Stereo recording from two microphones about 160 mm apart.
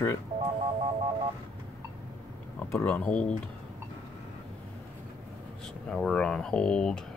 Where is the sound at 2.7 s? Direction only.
10° left (ahead or behind).